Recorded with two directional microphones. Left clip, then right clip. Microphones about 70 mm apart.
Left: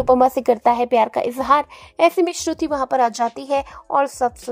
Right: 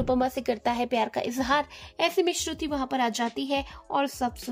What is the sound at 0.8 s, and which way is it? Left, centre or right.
Speech, left.